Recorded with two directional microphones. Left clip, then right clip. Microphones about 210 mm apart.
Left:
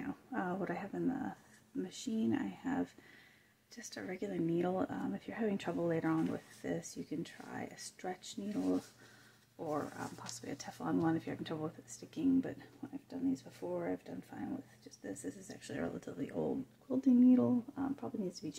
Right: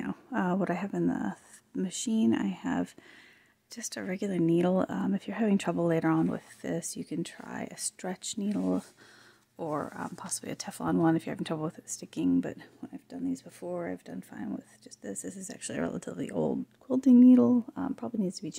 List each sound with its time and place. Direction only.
0.0 s speech: 55° right (ahead or behind)